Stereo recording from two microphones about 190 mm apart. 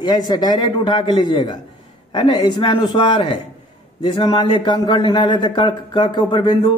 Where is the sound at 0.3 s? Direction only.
20° left (ahead or behind).